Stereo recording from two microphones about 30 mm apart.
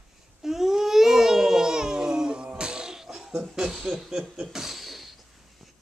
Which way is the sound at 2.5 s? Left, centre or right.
Right.